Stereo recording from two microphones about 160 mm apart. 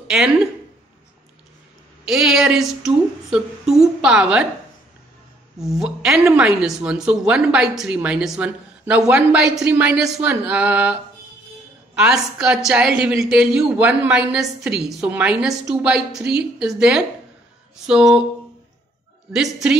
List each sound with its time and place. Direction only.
2.0 s a woman's voice: 5° right (ahead or behind)
5.6 s a woman's voice: 5° right (ahead or behind)
10.1 s a sound: 10° right (ahead or behind)
11.9 s a woman's voice: 5° right (ahead or behind)
19.3 s a woman's voice: 5° right (ahead or behind)